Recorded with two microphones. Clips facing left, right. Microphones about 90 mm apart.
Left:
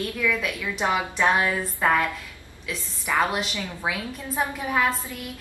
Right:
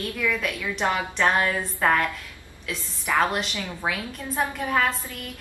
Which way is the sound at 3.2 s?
5° left (ahead or behind).